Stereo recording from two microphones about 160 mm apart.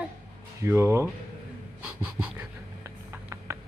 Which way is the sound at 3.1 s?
15° right (ahead or behind).